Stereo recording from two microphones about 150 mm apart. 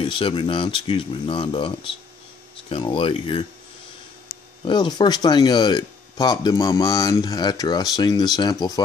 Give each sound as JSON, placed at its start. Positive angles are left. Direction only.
{"t": 0.0, "sound": "speech", "side_deg": 35}
{"t": 4.6, "sound": "speech", "side_deg": 30}